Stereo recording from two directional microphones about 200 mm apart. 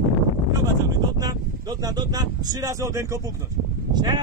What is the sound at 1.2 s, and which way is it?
Speech, 20° right (ahead or behind).